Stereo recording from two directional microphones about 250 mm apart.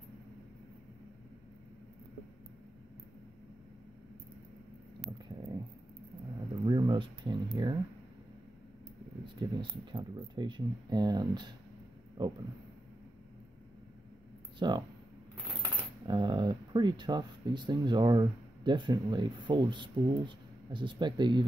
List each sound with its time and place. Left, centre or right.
6.6 s a sound: centre
9.2 s speech: centre
14.6 s speech: centre
16.1 s speech: centre